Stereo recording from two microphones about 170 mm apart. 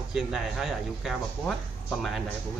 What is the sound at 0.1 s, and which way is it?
Speech, centre (ahead or behind).